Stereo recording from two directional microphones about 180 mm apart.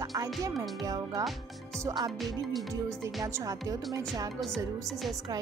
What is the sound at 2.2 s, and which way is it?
Speech, centre (ahead or behind).